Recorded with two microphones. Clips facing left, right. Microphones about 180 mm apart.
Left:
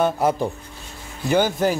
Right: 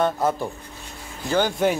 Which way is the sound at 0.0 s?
15° left (ahead or behind).